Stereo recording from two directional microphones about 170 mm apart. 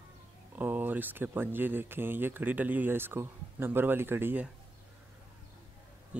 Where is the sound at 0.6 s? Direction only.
10° right (ahead or behind).